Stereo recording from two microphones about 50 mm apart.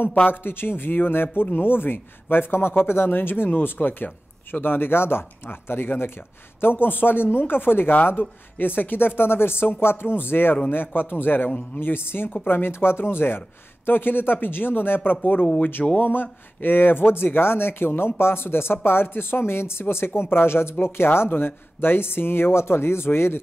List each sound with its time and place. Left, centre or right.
0.3 s speech: left
15.4 s speech: left
16.0 s speech: left